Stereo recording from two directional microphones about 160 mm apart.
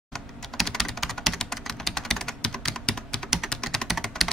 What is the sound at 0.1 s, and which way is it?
Computer keyboard, centre (ahead or behind).